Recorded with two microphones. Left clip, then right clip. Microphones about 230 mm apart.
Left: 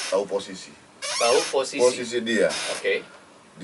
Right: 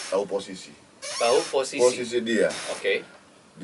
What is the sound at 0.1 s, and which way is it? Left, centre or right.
Speech, centre.